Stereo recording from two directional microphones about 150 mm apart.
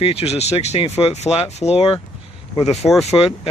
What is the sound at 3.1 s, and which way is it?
Speech, 45° left (ahead or behind).